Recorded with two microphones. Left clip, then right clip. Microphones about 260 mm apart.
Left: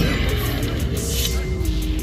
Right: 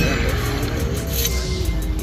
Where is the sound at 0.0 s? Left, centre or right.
Centre.